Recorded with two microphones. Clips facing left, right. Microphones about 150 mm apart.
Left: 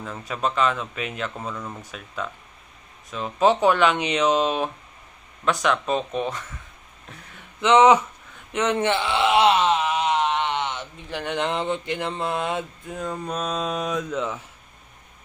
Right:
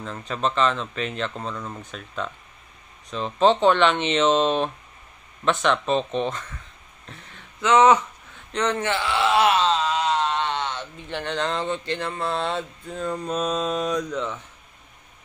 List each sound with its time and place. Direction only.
0.0 s speech: 5° left (ahead or behind)
7.6 s speech: 20° left (ahead or behind)
8.5 s groan: 15° left (ahead or behind)
11.0 s speech: 5° left (ahead or behind)
11.3 s speech: 15° left (ahead or behind)